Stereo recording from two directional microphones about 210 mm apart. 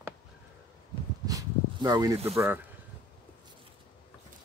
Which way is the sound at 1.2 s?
20° right (ahead or behind).